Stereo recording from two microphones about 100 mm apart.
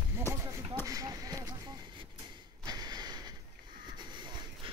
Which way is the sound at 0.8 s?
35° right (ahead or behind).